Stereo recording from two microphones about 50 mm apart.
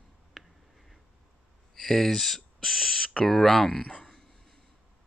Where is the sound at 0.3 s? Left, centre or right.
Centre.